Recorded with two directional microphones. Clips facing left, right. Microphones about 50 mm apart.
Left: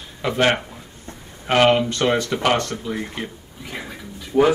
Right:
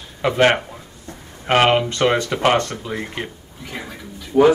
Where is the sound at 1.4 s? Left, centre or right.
Right.